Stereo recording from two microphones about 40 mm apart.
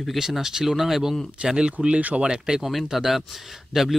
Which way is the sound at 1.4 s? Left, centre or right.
Right.